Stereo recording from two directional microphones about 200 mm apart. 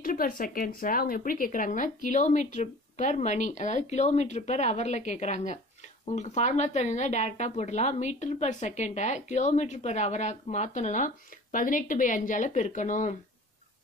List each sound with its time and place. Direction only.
0.0 s speech: 45° left (ahead or behind)